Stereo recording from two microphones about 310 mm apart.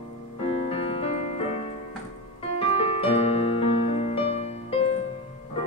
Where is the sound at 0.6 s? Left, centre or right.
Centre.